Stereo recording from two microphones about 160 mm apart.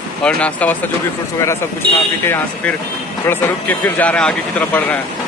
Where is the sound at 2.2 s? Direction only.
15° left (ahead or behind).